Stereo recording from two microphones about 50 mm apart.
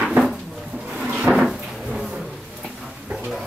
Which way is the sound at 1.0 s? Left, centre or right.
Right.